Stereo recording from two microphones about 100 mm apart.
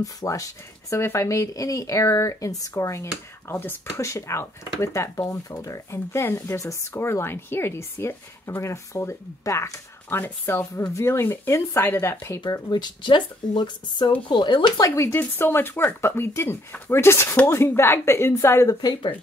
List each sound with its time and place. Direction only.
0.0 s speech: 35° left (ahead or behind)
12.4 s speech: 40° left (ahead or behind)
14.8 s speech: 25° left (ahead or behind)
18.8 s speech: 40° left (ahead or behind)